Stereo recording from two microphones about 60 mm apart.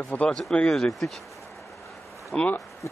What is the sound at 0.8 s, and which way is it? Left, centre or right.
Speech, centre.